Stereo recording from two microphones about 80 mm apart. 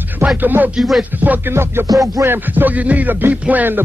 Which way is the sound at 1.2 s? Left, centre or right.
Right.